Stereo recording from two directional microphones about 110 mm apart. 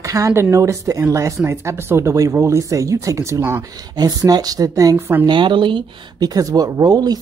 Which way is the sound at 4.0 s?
35° right (ahead or behind).